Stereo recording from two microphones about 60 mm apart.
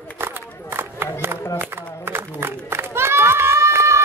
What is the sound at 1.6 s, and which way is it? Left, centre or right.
Run, right.